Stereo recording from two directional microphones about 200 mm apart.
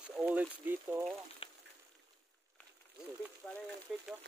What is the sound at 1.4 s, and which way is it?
Frying, 25° left (ahead or behind).